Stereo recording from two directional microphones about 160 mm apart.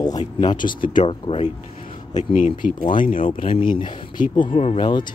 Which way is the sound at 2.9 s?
35° left (ahead or behind).